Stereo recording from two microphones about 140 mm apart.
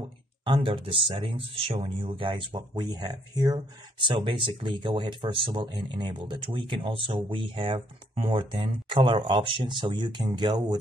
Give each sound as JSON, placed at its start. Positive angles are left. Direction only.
{"t": 0.5, "sound": "speech", "side_deg": -40}